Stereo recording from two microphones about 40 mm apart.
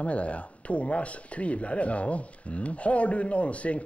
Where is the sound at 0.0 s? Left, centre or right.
Left.